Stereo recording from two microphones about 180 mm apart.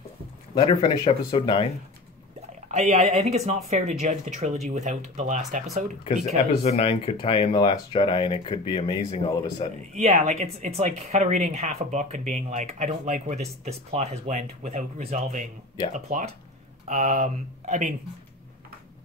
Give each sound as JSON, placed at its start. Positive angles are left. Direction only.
{"t": 0.6, "sound": "speech", "side_deg": 25}
{"t": 2.7, "sound": "speech", "side_deg": -40}
{"t": 6.0, "sound": "speech", "side_deg": 35}
{"t": 9.9, "sound": "speech", "side_deg": -40}